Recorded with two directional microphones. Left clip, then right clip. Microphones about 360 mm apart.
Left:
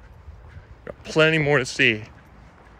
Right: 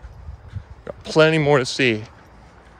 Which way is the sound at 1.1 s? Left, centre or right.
Centre.